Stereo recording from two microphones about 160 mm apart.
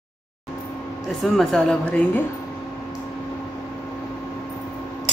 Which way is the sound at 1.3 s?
Centre (ahead or behind).